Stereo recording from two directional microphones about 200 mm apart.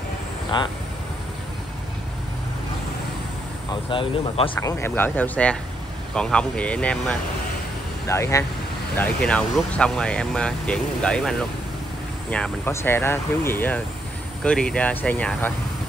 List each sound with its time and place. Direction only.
0.5 s speech: 20° left (ahead or behind)
3.9 s speech: 25° left (ahead or behind)
4.6 s speech: 15° left (ahead or behind)